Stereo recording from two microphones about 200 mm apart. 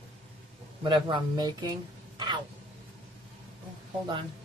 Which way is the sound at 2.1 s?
20° right (ahead or behind).